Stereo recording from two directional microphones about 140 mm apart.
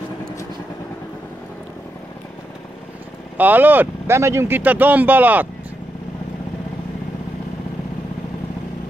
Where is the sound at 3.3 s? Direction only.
15° right (ahead or behind).